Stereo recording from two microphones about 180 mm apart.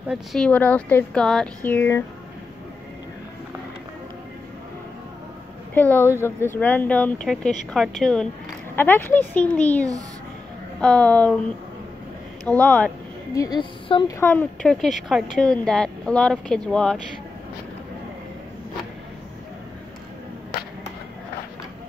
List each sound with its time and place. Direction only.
0.1 s a woman's voice: centre (ahead or behind)
5.8 s a woman's voice: 10° left (ahead or behind)
13.3 s a woman's voice: 20° left (ahead or behind)
14.3 s speech: 5° left (ahead or behind)